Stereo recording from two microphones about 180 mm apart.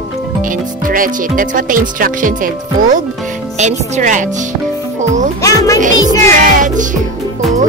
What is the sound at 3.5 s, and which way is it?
Speech, 40° right (ahead or behind).